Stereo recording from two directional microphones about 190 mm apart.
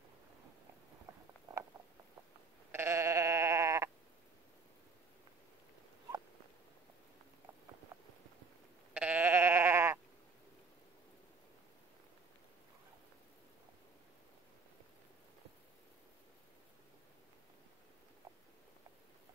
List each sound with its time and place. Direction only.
2.7 s sheep: 15° right (ahead or behind)
7.9 s a sound: 15° right (ahead or behind)
8.9 s sheep: 10° right (ahead or behind)